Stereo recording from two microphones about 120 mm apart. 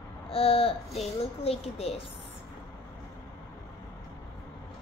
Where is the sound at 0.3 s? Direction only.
55° left (ahead or behind).